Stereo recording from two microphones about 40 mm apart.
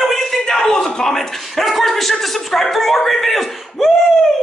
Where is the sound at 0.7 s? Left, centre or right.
Centre.